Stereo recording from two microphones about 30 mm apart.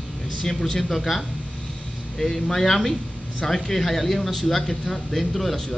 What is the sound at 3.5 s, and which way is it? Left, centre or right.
Speech, centre.